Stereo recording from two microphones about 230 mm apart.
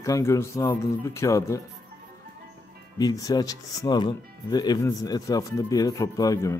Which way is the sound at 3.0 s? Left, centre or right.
Centre.